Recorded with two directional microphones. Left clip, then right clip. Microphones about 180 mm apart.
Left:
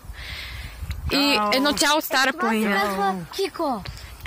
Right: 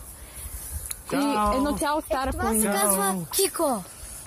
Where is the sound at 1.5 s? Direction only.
10° left (ahead or behind).